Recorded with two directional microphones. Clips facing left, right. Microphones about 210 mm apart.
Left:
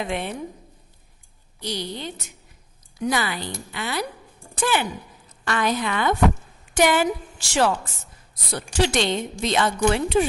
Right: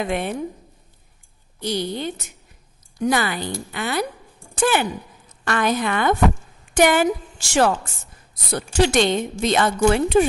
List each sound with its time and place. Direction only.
0.0 s a woman's voice: 50° right (ahead or behind)
1.6 s a woman's voice: 50° right (ahead or behind)
8.8 s a woman's voice: 50° right (ahead or behind)